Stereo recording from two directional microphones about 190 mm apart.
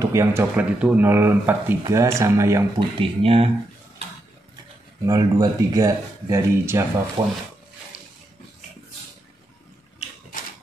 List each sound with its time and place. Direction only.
0.0 s speech: 15° right (ahead or behind)
3.0 s speech: 30° right (ahead or behind)
5.0 s speech: 20° right (ahead or behind)